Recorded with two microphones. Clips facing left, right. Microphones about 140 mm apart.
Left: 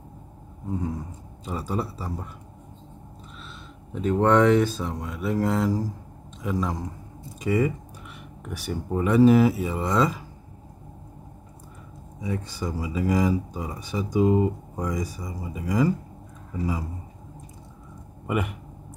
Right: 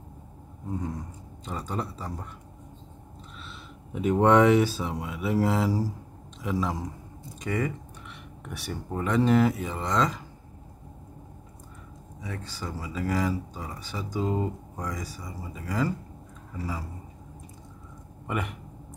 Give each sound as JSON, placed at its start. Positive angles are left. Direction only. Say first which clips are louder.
{"t": 0.7, "sound": "speech", "louder": "left 3 dB", "side_deg": 0}
{"t": 3.9, "sound": "speech", "louder": "even", "side_deg": -10}
{"t": 12.2, "sound": "speech", "louder": "left 7 dB", "side_deg": 15}
{"t": 18.2, "sound": "a man's voice", "louder": "left 5 dB", "side_deg": 5}